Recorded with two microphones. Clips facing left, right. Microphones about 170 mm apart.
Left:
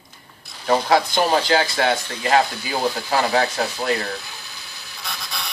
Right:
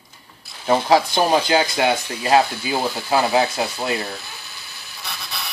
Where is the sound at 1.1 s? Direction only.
15° right (ahead or behind).